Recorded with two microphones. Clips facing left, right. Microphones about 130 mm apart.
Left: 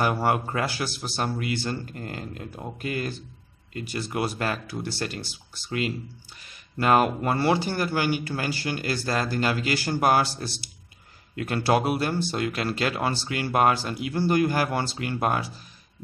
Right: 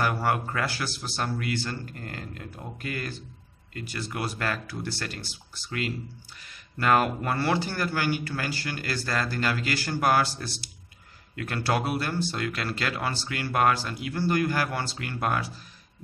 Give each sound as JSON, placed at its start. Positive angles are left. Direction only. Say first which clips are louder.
{"t": 0.0, "sound": "speech", "louder": "left 3 dB", "side_deg": 20}